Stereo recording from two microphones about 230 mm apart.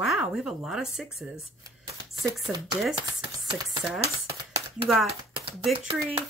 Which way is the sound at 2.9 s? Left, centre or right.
Right.